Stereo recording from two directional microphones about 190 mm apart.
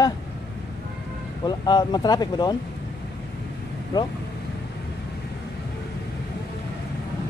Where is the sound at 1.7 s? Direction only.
20° left (ahead or behind).